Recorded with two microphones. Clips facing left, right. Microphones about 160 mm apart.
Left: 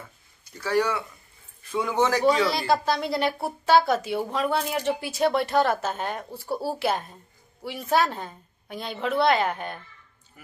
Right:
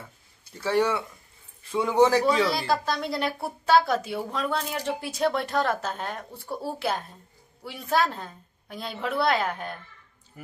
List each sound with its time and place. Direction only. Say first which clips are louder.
0.5 s speech: right 1 dB; 25° right (ahead or behind)
2.4 s a woman's voice: left 2 dB; centre (ahead or behind)
10.4 s speech: right 7 dB; 30° right (ahead or behind)